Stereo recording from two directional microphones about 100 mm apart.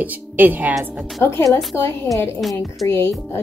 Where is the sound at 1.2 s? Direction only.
25° left (ahead or behind).